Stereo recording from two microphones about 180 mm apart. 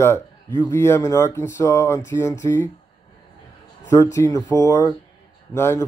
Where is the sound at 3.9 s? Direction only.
15° left (ahead or behind).